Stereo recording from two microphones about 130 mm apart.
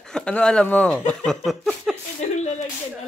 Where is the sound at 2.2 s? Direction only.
60° left (ahead or behind).